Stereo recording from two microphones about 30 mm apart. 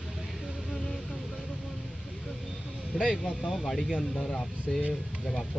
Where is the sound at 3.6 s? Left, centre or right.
Centre.